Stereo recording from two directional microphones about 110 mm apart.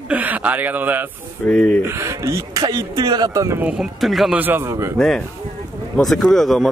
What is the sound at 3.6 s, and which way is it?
Speech, 10° right (ahead or behind).